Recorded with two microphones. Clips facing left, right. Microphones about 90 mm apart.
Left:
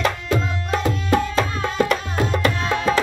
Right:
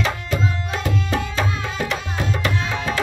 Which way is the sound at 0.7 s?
50° left (ahead or behind).